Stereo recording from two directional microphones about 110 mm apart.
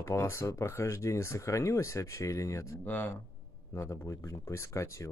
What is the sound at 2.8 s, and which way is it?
Speech, 15° left (ahead or behind).